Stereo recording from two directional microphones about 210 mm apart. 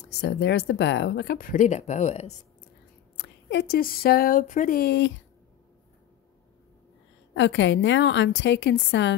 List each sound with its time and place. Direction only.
0.0 s speech: 50° left (ahead or behind); by 2.3 s 30° left (ahead or behind)
3.2 s speech: 55° left (ahead or behind)
7.3 s a woman's voice: 60° left (ahead or behind)